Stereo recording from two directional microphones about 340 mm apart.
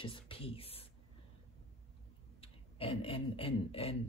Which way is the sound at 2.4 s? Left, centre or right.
Centre.